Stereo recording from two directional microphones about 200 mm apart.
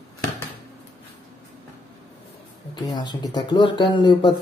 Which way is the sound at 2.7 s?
20° left (ahead or behind).